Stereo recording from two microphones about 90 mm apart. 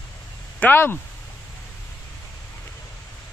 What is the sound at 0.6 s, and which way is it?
Speech, 20° left (ahead or behind).